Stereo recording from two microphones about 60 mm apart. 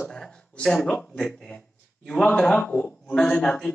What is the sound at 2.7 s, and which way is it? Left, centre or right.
Speech, left.